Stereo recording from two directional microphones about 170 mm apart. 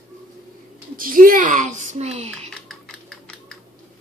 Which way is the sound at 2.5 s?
Centre (ahead or behind).